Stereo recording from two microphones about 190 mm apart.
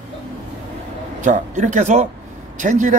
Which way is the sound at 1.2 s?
40° right (ahead or behind).